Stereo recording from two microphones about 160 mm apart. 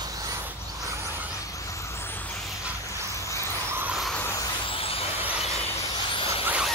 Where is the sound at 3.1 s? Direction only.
20° left (ahead or behind).